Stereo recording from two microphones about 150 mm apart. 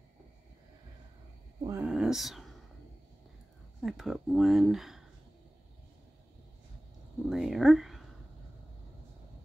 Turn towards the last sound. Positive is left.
turn(degrees=0)  # may be behind; listen again after turning